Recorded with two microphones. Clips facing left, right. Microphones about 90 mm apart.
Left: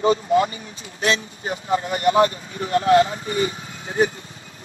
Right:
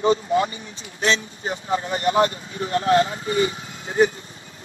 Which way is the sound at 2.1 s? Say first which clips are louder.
Left 2 dB; 30° left (ahead or behind).